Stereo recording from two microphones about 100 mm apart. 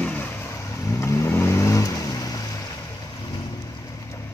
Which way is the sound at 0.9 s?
30° left (ahead or behind).